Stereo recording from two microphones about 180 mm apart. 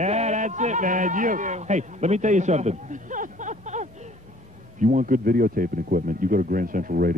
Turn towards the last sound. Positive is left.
turn(degrees=-50)  # may be behind; listen again after turning